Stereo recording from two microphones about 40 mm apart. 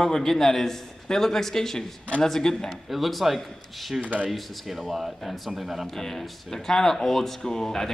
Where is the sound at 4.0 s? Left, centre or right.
Right.